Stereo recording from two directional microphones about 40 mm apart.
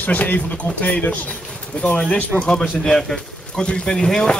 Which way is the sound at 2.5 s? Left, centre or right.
Centre.